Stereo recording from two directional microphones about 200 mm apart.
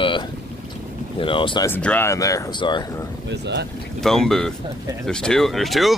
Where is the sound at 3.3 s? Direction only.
60° right (ahead or behind).